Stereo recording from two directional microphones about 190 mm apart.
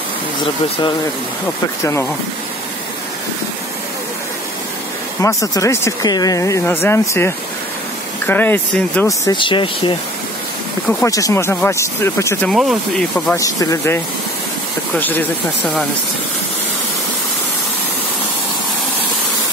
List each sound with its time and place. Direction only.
5.2 s speech: 15° left (ahead or behind)
9.0 s speech: 20° left (ahead or behind)
10.9 s speech: 15° left (ahead or behind)
12.4 s speech: centre (ahead or behind)
13.3 s speech: 15° left (ahead or behind)